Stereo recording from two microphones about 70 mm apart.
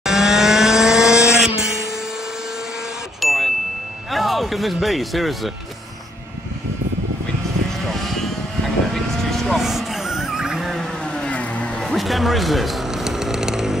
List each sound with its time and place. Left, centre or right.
0.0 s vehicle: centre
3.2 s ding: centre
4.1 s speech: centre
7.9 s vehicle: centre
11.1 s vehicle: centre
11.8 s chainsaw: centre